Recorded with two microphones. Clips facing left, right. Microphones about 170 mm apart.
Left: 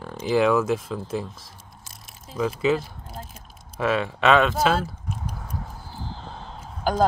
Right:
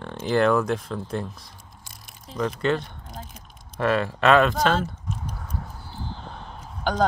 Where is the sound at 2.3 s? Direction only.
5° left (ahead or behind).